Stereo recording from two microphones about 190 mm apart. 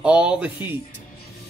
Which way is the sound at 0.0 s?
5° right (ahead or behind).